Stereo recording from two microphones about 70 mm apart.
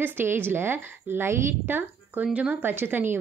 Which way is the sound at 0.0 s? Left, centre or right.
Right.